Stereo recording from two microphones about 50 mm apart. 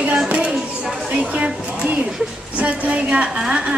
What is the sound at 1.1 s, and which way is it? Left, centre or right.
A woman's voice, right.